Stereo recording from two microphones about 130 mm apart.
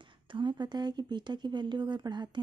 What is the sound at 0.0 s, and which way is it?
Speech, 40° right (ahead or behind).